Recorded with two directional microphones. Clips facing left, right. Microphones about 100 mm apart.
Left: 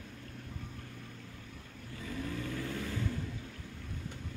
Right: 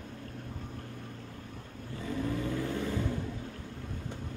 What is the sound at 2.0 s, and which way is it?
Vehicle, 30° right (ahead or behind).